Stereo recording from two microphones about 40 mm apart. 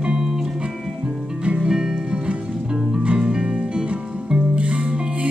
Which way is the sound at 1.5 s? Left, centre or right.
Right.